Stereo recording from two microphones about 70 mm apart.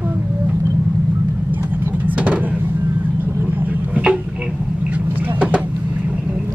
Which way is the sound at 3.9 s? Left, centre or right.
Centre.